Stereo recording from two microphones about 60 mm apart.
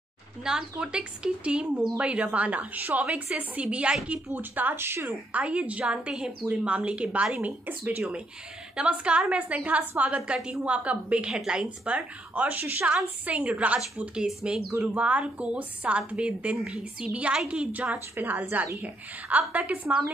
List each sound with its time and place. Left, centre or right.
0.4 s speech: centre
4.3 s speech: right
5.3 s speech: right
7.3 s speech: right
8.7 s a woman's voice: centre
18.1 s speech: right